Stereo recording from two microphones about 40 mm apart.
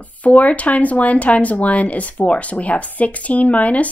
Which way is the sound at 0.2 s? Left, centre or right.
Left.